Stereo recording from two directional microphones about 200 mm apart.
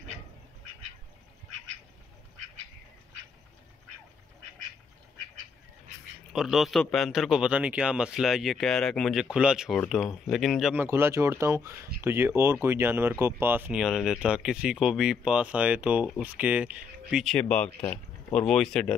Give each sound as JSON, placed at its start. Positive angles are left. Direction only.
{"t": 6.3, "sound": "a man's voice", "side_deg": 0}